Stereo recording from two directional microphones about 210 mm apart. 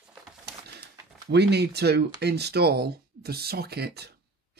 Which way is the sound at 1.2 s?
50° right (ahead or behind).